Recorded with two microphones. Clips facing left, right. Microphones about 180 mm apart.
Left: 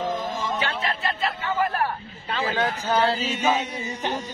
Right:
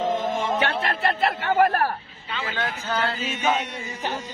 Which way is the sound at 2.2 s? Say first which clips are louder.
Left 5 dB; 40° left (ahead or behind).